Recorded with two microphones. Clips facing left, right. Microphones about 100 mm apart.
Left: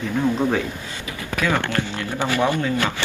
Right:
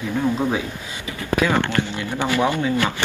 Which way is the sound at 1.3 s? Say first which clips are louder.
Right 3 dB; 20° right (ahead or behind).